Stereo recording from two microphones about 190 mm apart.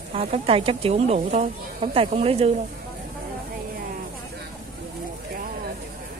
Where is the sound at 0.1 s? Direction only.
30° right (ahead or behind).